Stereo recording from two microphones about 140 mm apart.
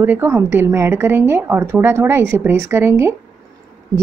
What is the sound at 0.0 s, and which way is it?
A woman's voice, 15° right (ahead or behind).